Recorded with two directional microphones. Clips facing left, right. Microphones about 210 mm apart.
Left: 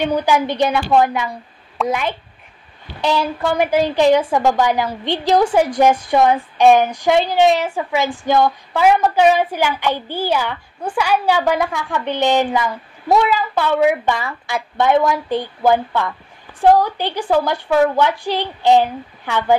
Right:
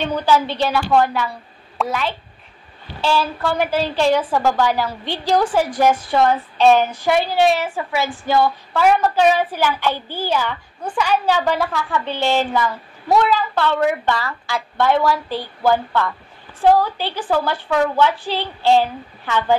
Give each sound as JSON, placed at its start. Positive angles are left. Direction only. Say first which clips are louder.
{"t": 0.0, "sound": "a woman's voice", "louder": "left 1 dB", "side_deg": 15}